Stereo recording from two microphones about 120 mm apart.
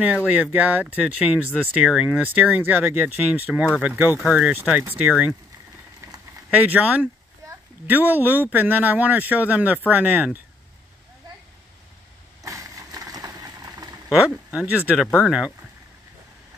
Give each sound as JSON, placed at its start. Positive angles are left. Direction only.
{"t": 0.0, "sound": "speech", "side_deg": -10}
{"t": 6.7, "sound": "speech", "side_deg": -10}
{"t": 12.4, "sound": "vehicle", "side_deg": -25}
{"t": 14.2, "sound": "speech", "side_deg": -10}